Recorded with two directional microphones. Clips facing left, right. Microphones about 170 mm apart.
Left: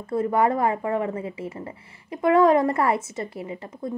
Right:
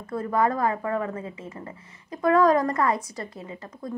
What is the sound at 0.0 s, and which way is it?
Speech, 25° left (ahead or behind).